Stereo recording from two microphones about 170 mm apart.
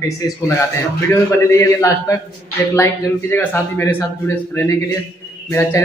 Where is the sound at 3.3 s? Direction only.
10° left (ahead or behind).